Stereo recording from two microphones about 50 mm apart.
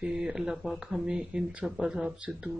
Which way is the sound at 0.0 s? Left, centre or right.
Centre.